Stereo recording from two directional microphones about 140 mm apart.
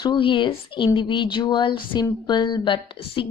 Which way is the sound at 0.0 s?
35° left (ahead or behind).